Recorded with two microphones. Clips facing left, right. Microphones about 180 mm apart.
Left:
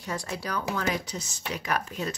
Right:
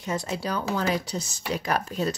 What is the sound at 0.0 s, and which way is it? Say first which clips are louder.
Speech: right 4 dB; 20° right (ahead or behind).